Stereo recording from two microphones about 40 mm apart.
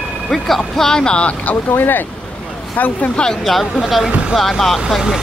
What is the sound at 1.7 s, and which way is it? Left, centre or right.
Speech, left.